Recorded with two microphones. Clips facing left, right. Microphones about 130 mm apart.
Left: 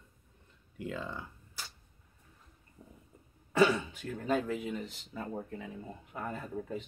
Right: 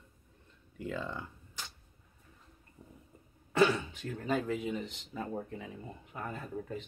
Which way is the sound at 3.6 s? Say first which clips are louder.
Left 1 dB; 10° left (ahead or behind).